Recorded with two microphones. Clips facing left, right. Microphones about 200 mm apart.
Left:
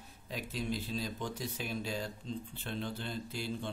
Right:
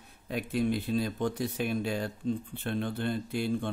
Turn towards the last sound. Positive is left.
turn(degrees=-55)  # may be behind; listen again after turning